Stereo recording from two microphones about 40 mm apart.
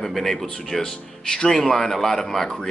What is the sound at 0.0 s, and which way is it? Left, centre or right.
Speech, centre.